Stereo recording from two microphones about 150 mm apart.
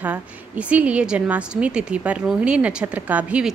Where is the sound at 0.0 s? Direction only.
10° right (ahead or behind).